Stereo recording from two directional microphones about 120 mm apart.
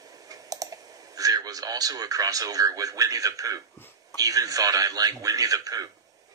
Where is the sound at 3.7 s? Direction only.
20° left (ahead or behind).